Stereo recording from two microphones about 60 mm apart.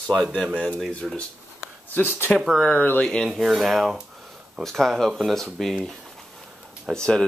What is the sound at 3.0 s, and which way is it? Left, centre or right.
Speech, centre.